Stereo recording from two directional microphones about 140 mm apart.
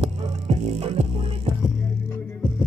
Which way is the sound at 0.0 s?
45° right (ahead or behind).